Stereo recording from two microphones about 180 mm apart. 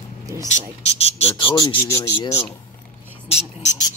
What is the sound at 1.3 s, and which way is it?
Speech, 25° left (ahead or behind).